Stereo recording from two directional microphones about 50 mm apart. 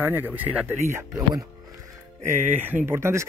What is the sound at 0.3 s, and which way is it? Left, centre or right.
Speech, right.